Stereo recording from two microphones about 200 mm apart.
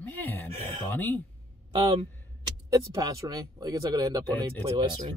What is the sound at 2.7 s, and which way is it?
Speech, 15° right (ahead or behind).